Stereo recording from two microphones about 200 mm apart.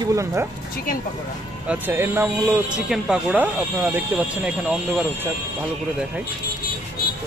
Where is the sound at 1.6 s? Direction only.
10° right (ahead or behind).